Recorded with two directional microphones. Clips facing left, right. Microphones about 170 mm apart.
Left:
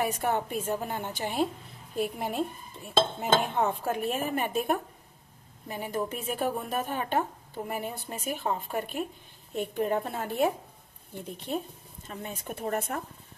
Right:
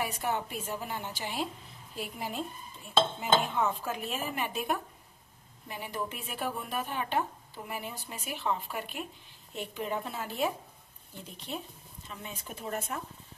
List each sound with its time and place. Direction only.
0.0 s a woman's voice: 55° left (ahead or behind)